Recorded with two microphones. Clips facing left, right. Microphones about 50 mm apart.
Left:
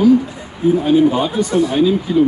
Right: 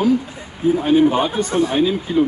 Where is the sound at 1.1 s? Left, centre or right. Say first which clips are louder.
Left 2 dB; right.